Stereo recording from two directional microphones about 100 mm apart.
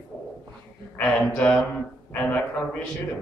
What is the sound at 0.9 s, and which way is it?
Speech, 10° left (ahead or behind).